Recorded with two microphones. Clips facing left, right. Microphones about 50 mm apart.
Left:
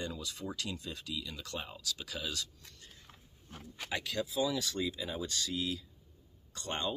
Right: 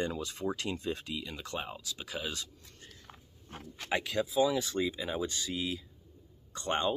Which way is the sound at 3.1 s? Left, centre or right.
Centre.